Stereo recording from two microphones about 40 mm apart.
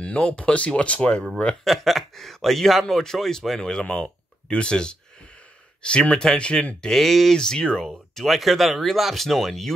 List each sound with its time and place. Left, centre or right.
0.0 s speech: left
1.6 s speech: centre
3.8 s speech: left
6.9 s speech: centre
7.3 s speech: centre